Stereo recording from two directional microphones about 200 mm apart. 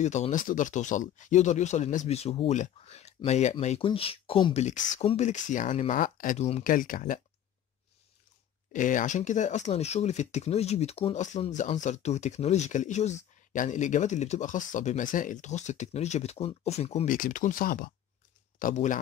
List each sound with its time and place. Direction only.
0.0 s speech: 35° left (ahead or behind)
4.6 s speech: 35° left (ahead or behind)
8.7 s speech: 40° left (ahead or behind)